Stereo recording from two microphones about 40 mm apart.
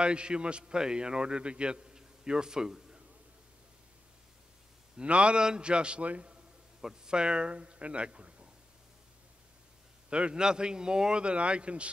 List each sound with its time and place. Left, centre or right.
0.0 s a man's voice: right
2.0 s a sound: centre
4.9 s a man's voice: right
6.8 s speech: centre
10.0 s a man's voice: right